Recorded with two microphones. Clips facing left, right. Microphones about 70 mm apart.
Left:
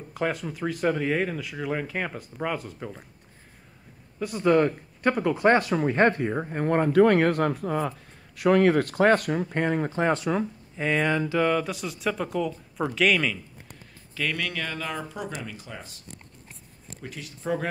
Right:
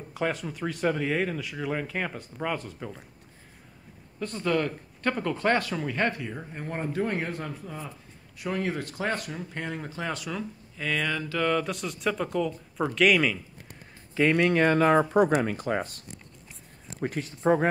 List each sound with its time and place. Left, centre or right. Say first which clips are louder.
0.1 s speech: left 1 dB; centre
4.2 s speech: left 3 dB; centre
4.5 s speech: left 7 dB; left
5.9 s speech: left 7 dB; left; by 11.5 s centre
11.5 s speech: left 1 dB; centre
14.1 s speech: right 8 dB; right
17.0 s speech: right 8 dB; right